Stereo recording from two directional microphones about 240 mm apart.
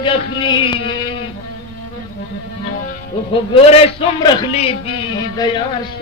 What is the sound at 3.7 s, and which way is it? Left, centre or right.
A man's voice, left.